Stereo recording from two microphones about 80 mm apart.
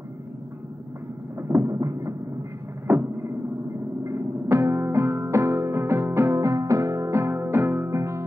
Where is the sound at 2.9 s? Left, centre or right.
Right.